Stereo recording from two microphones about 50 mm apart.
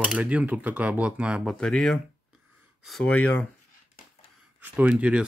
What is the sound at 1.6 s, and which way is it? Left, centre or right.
Speech, centre.